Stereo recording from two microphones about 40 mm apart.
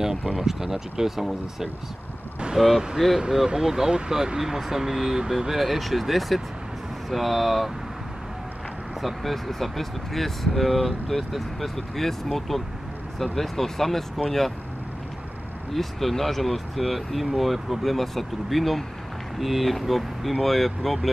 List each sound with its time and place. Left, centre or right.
0.4 s speech: centre
9.0 s speech: centre
15.7 s speech: centre